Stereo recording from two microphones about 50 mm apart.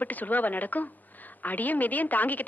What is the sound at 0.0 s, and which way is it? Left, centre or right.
A woman's voice, left.